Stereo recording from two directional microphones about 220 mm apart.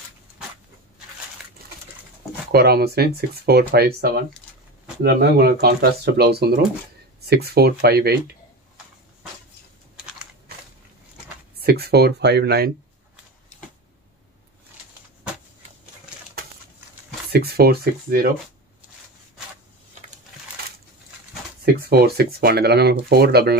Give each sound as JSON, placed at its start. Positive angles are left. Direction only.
{"t": 2.5, "sound": "speech", "side_deg": -45}
{"t": 11.6, "sound": "speech", "side_deg": -45}
{"t": 17.3, "sound": "speech", "side_deg": -45}
{"t": 21.7, "sound": "speech", "side_deg": -45}